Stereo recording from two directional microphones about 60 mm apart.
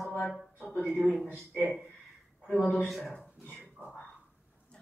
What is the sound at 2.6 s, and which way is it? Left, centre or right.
Speech, left.